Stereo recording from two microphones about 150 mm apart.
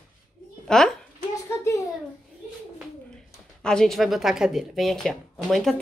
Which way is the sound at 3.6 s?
5° left (ahead or behind).